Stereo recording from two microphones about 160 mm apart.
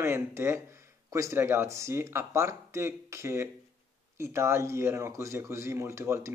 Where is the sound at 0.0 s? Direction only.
15° right (ahead or behind).